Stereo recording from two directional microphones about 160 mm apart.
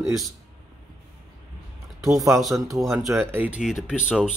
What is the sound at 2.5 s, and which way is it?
Speech, 20° right (ahead or behind).